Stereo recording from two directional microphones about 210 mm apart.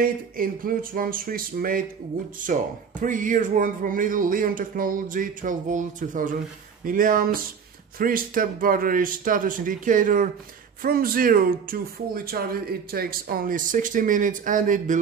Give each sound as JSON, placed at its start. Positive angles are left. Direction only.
{"t": 0.0, "sound": "speech", "side_deg": -40}